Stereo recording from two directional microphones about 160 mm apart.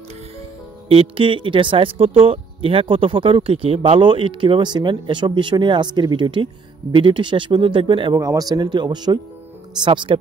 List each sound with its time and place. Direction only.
0.8 s speech: 35° right (ahead or behind)
8.2 s speech: 20° right (ahead or behind)